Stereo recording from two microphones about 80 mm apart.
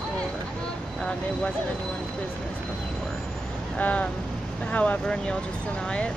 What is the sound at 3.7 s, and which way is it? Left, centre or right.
Speech, centre.